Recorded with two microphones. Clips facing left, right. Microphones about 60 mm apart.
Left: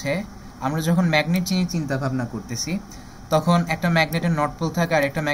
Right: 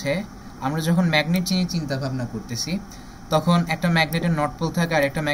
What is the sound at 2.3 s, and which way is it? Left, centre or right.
Speech, centre.